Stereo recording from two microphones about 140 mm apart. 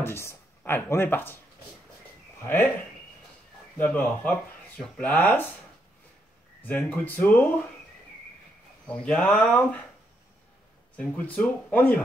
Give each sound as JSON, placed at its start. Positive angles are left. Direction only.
{"t": 0.0, "sound": "speech", "side_deg": 20}
{"t": 2.4, "sound": "speech", "side_deg": 15}
{"t": 3.7, "sound": "speech", "side_deg": 10}
{"t": 6.6, "sound": "speech", "side_deg": 10}
{"t": 8.8, "sound": "speech", "side_deg": 10}
{"t": 11.0, "sound": "speech", "side_deg": 10}